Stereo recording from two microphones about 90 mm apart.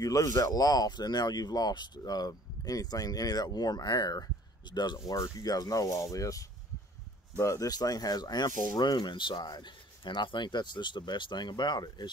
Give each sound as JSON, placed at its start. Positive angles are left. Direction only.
{"t": 0.0, "sound": "speech", "side_deg": 40}